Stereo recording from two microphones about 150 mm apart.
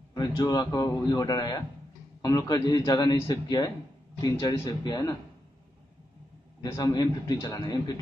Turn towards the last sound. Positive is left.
turn(degrees=25)  # may be behind; listen again after turning